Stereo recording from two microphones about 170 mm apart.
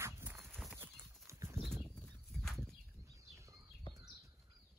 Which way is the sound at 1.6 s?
Centre (ahead or behind).